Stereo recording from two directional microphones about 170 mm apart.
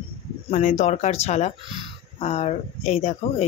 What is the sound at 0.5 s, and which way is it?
Speech, 45° left (ahead or behind).